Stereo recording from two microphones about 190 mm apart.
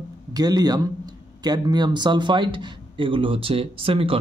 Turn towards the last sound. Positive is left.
turn(degrees=-30)  # may be behind; listen again after turning